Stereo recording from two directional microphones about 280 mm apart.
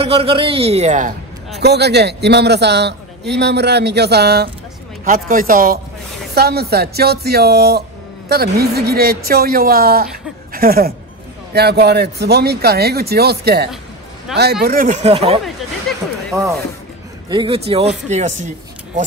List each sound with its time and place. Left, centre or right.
0.0 s a man's voice: right
1.6 s a man's voice: right
15.9 s a sound: centre
16.3 s speech: centre